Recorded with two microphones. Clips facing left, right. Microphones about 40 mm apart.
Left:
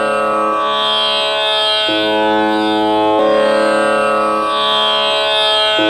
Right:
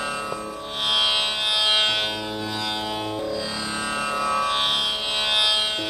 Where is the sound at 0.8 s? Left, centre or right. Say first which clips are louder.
Left 7 dB; left.